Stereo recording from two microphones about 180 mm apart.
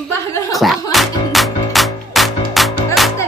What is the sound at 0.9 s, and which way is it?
Music, centre (ahead or behind).